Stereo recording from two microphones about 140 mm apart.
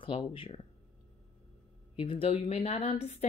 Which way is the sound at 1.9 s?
40° left (ahead or behind).